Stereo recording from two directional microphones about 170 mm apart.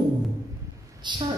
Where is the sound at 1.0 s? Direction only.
25° right (ahead or behind).